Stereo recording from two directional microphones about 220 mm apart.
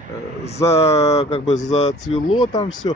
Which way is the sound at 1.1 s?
30° left (ahead or behind).